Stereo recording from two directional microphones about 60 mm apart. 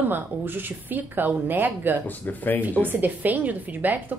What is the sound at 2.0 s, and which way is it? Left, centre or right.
Speech, left.